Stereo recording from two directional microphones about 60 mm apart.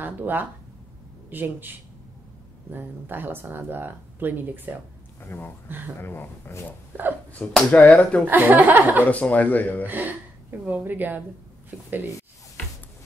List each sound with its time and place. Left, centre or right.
0.0 s speech: right
5.2 s speech: left
6.9 s speech: right
7.4 s speech: centre
7.7 s speech: left
8.3 s speech: right
9.0 s speech: left
9.8 s speech: right